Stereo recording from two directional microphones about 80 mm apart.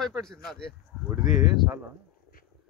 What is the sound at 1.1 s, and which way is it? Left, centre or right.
Speech, right.